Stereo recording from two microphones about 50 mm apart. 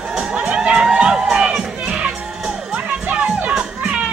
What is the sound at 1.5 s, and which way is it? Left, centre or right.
Crowd, centre.